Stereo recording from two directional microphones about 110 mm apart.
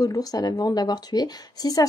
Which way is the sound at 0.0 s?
35° left (ahead or behind).